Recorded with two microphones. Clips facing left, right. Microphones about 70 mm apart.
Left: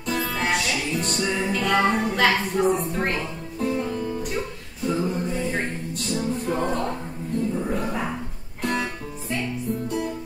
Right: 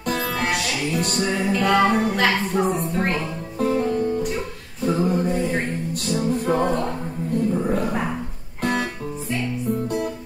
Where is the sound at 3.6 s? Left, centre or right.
Right.